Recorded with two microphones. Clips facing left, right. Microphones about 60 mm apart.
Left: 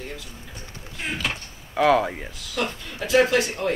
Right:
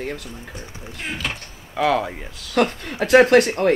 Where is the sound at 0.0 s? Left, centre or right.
Right.